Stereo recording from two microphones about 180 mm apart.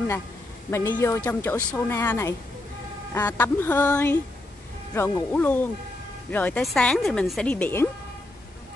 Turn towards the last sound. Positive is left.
turn(degrees=10)  # may be behind; listen again after turning